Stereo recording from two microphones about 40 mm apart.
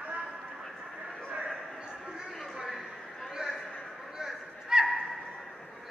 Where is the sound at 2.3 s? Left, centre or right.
Centre.